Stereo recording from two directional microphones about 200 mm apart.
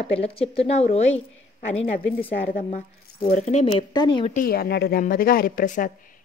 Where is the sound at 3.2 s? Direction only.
35° left (ahead or behind).